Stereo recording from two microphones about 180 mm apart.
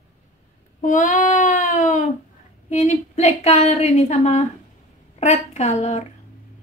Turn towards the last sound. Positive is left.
turn(degrees=40)  # may be behind; listen again after turning